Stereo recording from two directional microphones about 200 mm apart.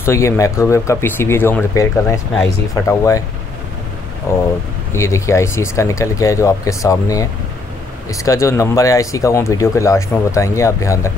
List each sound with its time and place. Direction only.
0.0 s speech: 15° left (ahead or behind)
4.3 s speech: 15° left (ahead or behind)